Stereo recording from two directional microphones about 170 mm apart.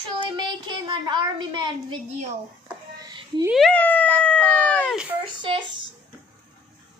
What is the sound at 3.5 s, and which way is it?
Humming, 5° left (ahead or behind).